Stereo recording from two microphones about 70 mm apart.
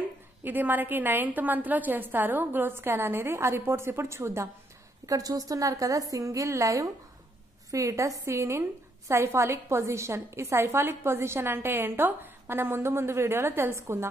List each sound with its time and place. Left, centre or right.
0.4 s a woman's voice: right
5.0 s a woman's voice: right